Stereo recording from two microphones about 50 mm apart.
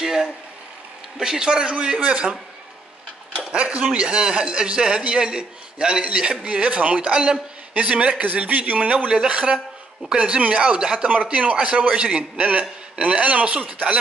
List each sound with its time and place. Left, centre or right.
0.0 s a sound: centre
1.1 s speech: centre
2.0 s a man's voice: right
3.3 s a man's voice: right